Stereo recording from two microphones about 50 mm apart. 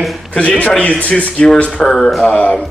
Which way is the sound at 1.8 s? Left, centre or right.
Centre.